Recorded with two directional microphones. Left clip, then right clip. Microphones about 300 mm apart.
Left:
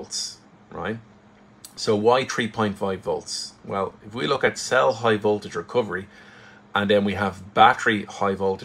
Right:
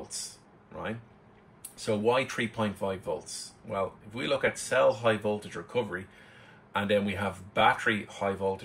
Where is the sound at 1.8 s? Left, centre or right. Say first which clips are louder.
Left 8 dB; left.